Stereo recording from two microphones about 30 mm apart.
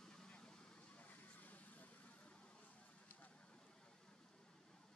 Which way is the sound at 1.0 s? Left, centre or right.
Left.